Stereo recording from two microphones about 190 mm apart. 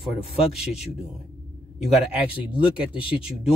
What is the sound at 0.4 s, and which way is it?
Speech, 30° left (ahead or behind).